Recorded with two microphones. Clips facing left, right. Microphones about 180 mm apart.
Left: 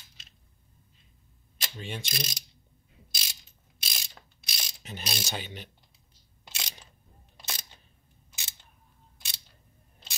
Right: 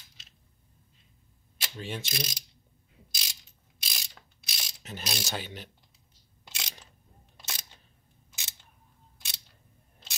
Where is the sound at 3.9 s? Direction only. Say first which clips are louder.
Left 1 dB; centre (ahead or behind).